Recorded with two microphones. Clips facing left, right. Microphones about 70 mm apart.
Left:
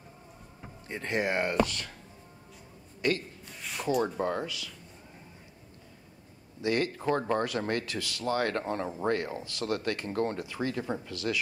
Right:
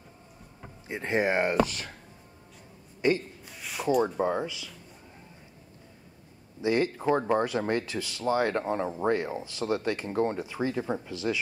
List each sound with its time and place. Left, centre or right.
0.8 s speech: centre
3.0 s a man's voice: centre
3.4 s a sound: centre
4.2 s speech: centre
6.6 s speech: centre